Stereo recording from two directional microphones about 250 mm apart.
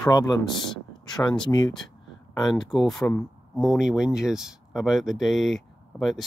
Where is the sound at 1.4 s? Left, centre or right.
Centre.